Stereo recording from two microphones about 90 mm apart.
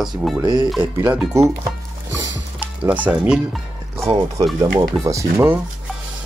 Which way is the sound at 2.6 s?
15° right (ahead or behind).